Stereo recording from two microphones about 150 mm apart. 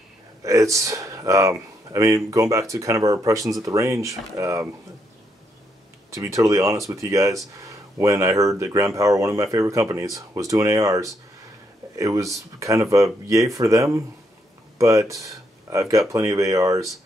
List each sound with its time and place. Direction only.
0.4 s speech: 20° right (ahead or behind)
6.0 s speech: 20° right (ahead or behind)